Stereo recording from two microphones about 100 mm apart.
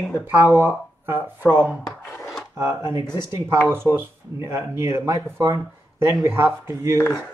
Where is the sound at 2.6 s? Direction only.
25° right (ahead or behind).